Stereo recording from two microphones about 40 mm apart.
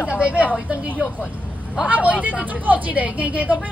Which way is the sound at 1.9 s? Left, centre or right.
Right.